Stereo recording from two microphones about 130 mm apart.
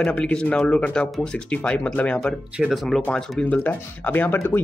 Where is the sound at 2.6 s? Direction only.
5° right (ahead or behind).